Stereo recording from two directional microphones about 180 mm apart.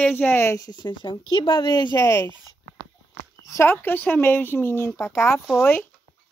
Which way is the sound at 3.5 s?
15° left (ahead or behind).